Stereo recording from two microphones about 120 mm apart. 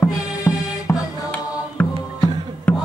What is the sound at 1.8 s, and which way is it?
Music, 10° left (ahead or behind).